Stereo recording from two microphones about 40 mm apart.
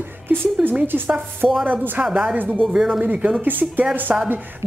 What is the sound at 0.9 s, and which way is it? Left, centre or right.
Speech, right.